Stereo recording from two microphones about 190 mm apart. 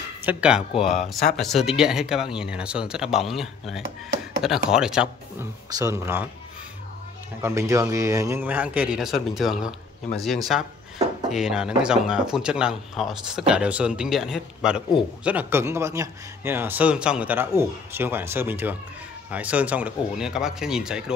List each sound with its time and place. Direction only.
0.2 s speech: 5° right (ahead or behind)
0.7 s speech: 30° left (ahead or behind)
1.3 s speech: centre (ahead or behind)
5.7 s speech: 15° right (ahead or behind)
7.4 s speech: 15° right (ahead or behind)
11.2 s speech: centre (ahead or behind)